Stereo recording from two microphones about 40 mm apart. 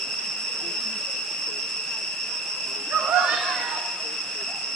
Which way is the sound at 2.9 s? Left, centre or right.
Right.